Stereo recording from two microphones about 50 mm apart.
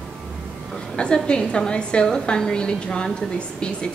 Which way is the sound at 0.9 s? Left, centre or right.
Centre.